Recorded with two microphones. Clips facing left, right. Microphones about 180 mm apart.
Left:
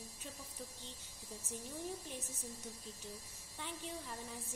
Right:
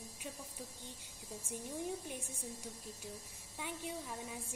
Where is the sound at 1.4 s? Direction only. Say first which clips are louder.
Right 3 dB; 10° right (ahead or behind).